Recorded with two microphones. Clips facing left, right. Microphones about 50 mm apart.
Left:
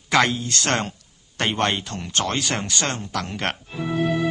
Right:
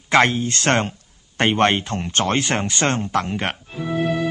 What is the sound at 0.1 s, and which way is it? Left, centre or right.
Speech, right.